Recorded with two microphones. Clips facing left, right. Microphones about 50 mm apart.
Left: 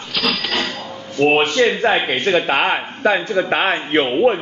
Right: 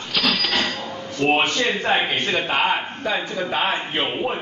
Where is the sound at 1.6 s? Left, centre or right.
Left.